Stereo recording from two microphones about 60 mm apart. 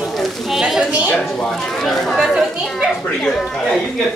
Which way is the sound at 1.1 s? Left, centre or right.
Centre.